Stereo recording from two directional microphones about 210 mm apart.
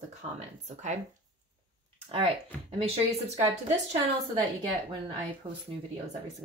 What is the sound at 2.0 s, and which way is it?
A woman's voice, 30° right (ahead or behind).